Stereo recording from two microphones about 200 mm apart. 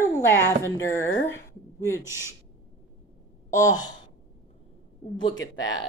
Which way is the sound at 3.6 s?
20° left (ahead or behind).